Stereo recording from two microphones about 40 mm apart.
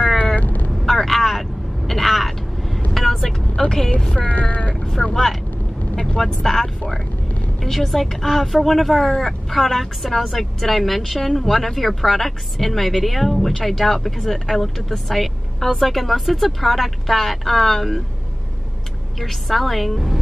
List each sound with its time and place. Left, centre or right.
0.4 s vehicle: left
0.7 s vehicle: centre
1.9 s a sound: centre
2.9 s vehicle: centre
3.9 s speech: centre
4.3 s meow: left
5.1 s speech: centre
19.1 s speech: centre